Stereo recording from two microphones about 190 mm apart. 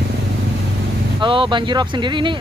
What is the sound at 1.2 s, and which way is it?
Speech, 25° right (ahead or behind).